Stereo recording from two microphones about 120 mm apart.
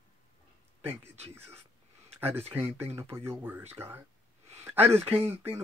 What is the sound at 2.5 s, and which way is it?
Speech, 20° right (ahead or behind).